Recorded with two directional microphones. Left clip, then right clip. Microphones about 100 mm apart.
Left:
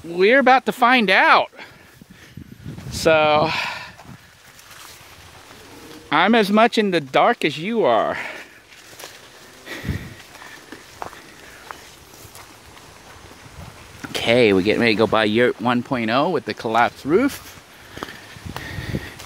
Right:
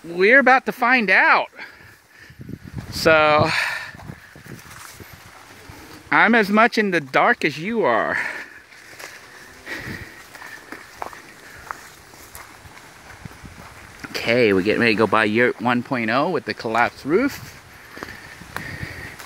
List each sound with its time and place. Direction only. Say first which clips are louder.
0.1 s speech: even; centre (ahead or behind)
0.7 s speech: left 1 dB; 25° left (ahead or behind)
2.9 s speech: right 1 dB; 10° right (ahead or behind)
6.0 s speech: right 1 dB; centre (ahead or behind); by 8.5 s 15° right (ahead or behind)
9.7 s sniff: right 1 dB; centre (ahead or behind)
14.0 s boat: left 2 dB; 20° left (ahead or behind)
14.6 s speech: even; centre (ahead or behind)
17.9 s a sound: left 1 dB; 20° left (ahead or behind)